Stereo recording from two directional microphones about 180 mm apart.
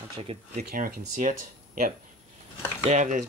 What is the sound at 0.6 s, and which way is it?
Speech, 50° right (ahead or behind).